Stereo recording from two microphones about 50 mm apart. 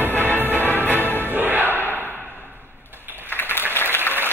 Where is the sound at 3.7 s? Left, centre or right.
Left.